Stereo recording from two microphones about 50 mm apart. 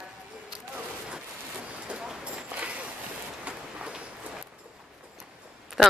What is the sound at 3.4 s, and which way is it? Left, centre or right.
Train, right.